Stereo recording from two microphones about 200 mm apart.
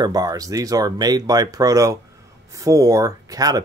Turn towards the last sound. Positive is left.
turn(degrees=-20)  # may be behind; listen again after turning